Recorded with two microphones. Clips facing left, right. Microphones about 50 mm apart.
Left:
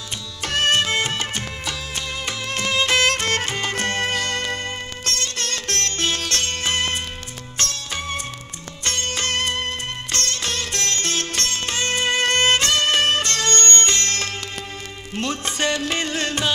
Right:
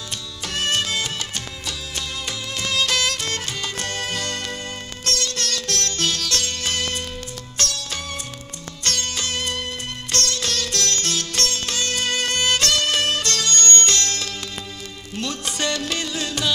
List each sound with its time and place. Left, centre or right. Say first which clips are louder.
0.5 s music: left 4 dB; left
10.1 s music: right 2 dB; left
13.7 s music: even; left
14.0 s music: left 2 dB; left
16.0 s music: left 3 dB; left